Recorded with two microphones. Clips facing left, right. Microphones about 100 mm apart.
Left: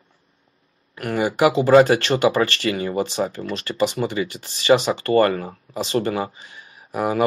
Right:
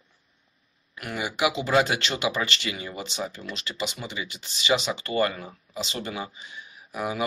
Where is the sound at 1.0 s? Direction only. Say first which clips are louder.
Left 8 dB; 40° left (ahead or behind).